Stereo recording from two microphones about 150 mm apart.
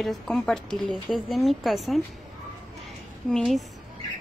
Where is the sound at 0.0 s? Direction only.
Centre (ahead or behind).